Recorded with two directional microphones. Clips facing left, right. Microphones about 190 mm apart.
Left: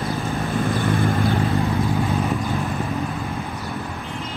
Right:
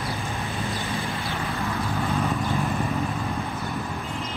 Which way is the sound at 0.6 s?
55° left (ahead or behind).